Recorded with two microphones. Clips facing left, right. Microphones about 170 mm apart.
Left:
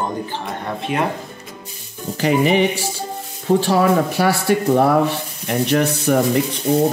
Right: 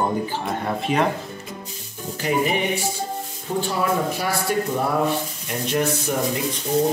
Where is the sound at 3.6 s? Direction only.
90° left; by 6.2 s 70° left (ahead or behind).